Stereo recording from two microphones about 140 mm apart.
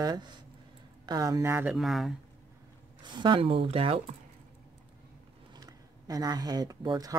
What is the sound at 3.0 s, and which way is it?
Speech, 35° right (ahead or behind).